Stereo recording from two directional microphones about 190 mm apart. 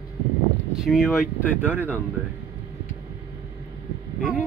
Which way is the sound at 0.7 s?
Centre (ahead or behind).